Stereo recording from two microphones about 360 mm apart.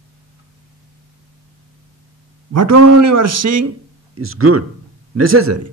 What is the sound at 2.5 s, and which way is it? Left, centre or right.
A man's voice, right.